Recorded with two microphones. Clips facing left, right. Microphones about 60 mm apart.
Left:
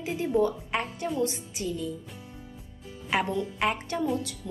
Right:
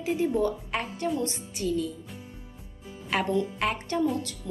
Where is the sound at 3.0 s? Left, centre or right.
Centre.